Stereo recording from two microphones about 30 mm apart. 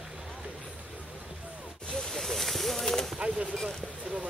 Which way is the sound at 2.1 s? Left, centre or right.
Centre.